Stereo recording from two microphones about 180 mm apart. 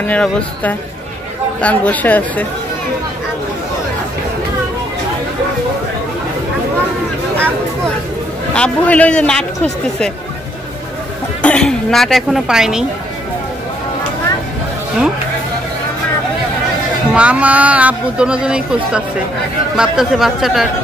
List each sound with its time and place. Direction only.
0.0 s speech: 10° left (ahead or behind)
8.5 s speech: 5° left (ahead or behind)
11.4 s speech: 5° left (ahead or behind)
17.1 s speech: 5° right (ahead or behind)